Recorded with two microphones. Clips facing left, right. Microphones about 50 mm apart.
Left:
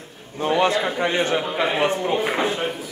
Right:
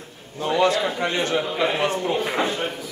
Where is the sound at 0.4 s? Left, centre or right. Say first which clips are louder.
Left 1 dB; left.